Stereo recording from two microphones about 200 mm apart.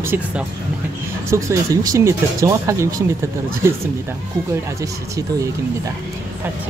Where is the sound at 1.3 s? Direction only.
15° right (ahead or behind).